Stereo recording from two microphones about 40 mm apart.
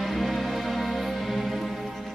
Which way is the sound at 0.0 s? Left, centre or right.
Centre.